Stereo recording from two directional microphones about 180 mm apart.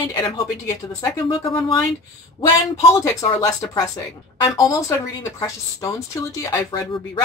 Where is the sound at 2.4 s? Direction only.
20° left (ahead or behind).